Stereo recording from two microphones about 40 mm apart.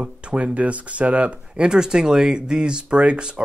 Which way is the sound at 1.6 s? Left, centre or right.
Centre.